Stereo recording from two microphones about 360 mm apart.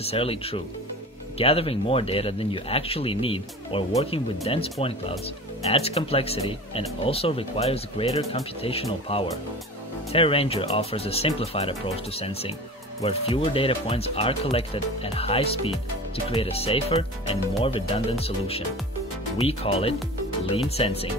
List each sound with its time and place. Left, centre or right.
0.0 s speech: centre